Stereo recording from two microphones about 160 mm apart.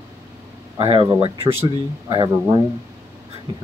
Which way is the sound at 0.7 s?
35° right (ahead or behind).